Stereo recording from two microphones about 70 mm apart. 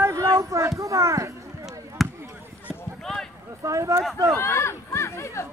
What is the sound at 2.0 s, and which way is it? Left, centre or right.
Basketball bounce, centre.